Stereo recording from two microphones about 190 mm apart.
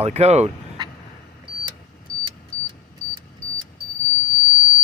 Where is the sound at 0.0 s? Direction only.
35° right (ahead or behind).